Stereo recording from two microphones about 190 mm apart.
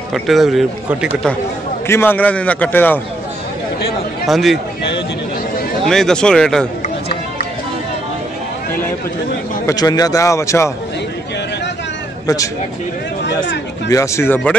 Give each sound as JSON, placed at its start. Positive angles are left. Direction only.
{"t": 0.1, "sound": "speech", "side_deg": 0}
{"t": 1.9, "sound": "a man's voice", "side_deg": 10}
{"t": 4.3, "sound": "speech", "side_deg": 0}
{"t": 5.9, "sound": "speech", "side_deg": 5}
{"t": 9.7, "sound": "a man's voice", "side_deg": 20}
{"t": 13.8, "sound": "a man's voice", "side_deg": 15}